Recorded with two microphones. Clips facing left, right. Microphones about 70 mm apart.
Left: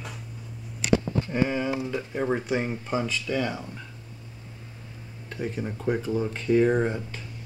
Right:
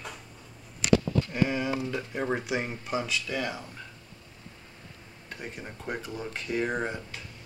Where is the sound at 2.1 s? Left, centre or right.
Centre.